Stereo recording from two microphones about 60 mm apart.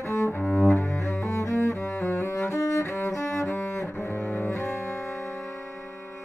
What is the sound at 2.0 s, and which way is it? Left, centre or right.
Cello, left.